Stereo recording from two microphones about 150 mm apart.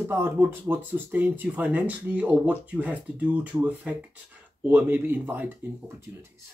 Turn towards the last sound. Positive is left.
turn(degrees=-10)  # may be behind; listen again after turning